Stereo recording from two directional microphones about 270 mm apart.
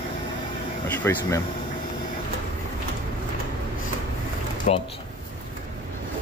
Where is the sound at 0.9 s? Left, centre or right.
Centre.